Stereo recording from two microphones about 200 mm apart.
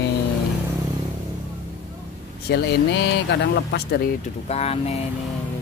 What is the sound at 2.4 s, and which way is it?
Speech, 60° left (ahead or behind).